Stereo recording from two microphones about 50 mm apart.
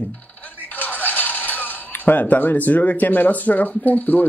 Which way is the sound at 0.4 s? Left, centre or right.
Left.